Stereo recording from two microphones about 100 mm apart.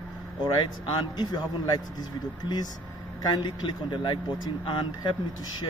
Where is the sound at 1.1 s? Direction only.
45° left (ahead or behind).